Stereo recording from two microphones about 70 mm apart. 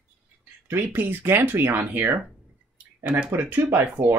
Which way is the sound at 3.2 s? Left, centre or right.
Right.